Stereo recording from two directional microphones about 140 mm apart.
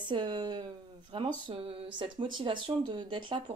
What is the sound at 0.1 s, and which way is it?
Speech, 35° right (ahead or behind).